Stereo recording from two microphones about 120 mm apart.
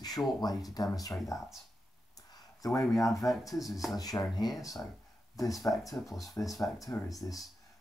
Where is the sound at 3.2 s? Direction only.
Centre (ahead or behind).